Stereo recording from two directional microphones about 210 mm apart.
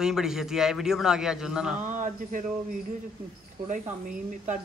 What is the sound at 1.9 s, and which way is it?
Speech, 40° right (ahead or behind).